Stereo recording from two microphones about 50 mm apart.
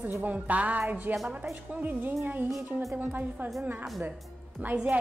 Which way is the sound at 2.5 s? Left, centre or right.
Centre.